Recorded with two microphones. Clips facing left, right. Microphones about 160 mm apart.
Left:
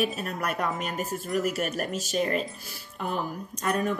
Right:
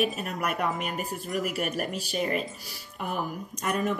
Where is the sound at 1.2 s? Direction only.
40° left (ahead or behind).